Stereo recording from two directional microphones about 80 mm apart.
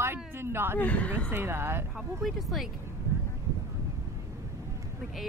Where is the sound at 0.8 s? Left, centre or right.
Centre.